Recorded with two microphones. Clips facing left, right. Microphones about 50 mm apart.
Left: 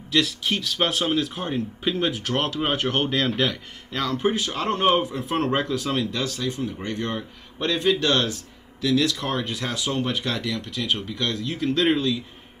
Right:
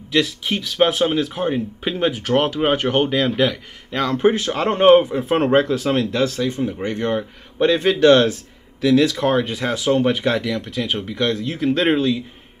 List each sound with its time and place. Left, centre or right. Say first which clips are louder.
0.1 s speech: right 3 dB; centre
4.1 s speech: right 7 dB; right
7.8 s speech: right 8 dB; right